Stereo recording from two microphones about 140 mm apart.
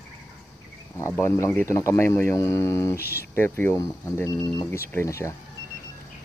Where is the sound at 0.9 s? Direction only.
20° left (ahead or behind).